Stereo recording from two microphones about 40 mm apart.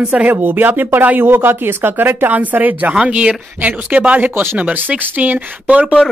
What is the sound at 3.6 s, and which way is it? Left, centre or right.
Speech, right.